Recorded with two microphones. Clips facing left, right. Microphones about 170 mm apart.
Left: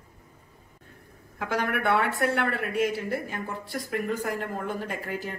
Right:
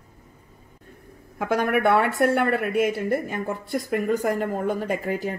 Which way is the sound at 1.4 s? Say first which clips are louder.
Right 6 dB; 50° right (ahead or behind).